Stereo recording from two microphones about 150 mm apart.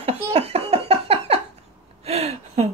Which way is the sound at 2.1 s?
45° right (ahead or behind).